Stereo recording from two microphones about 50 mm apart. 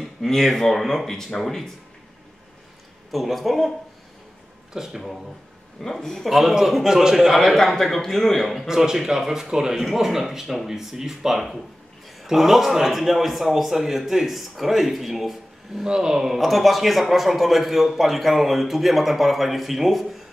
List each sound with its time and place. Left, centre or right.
0.0 s speech: centre
3.1 s speech: centre
4.7 s speech: centre
5.8 s a man's voice: centre
6.2 s speech: centre
7.3 s speech: centre
8.6 s speech: centre